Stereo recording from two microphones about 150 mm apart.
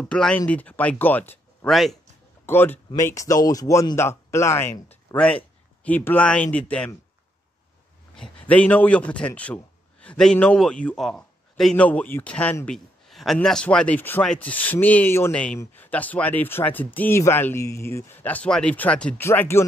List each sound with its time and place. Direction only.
0.0 s a man's voice: 5° left (ahead or behind)
1.7 s speech: centre (ahead or behind)
2.4 s a man's voice: 15° left (ahead or behind)
8.2 s a man's voice: 10° left (ahead or behind)